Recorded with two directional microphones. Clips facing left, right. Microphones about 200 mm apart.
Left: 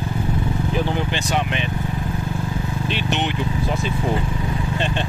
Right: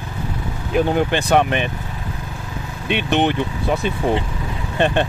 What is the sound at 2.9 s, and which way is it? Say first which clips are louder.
Speech: right 8 dB; 55° right (ahead or behind).